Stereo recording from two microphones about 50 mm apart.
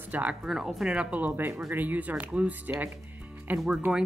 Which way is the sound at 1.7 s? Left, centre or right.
Right.